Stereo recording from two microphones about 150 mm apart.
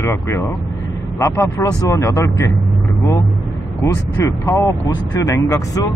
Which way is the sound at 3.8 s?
20° left (ahead or behind).